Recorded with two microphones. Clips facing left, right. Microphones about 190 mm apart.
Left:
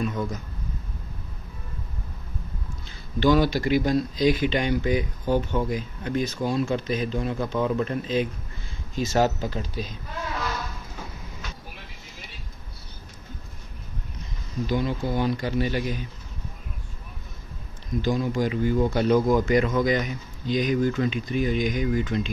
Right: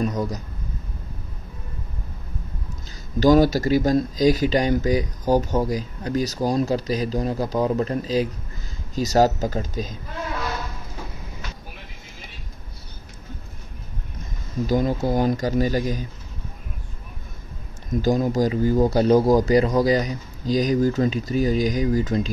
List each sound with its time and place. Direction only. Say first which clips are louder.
0.0 s speech: right 3 dB; 40° right (ahead or behind)
3.2 s speech: right 5 dB; 40° right (ahead or behind)
14.7 s speech: right 5 dB; 40° right (ahead or behind)
18.0 s speech: right 5 dB; 40° right (ahead or behind)